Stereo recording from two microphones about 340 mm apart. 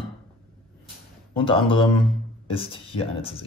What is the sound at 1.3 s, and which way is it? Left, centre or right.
Speech, centre.